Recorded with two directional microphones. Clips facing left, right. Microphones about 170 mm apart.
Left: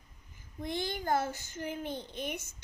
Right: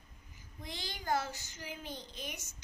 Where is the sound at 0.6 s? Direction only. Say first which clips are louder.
Left 10 dB; 55° left (ahead or behind).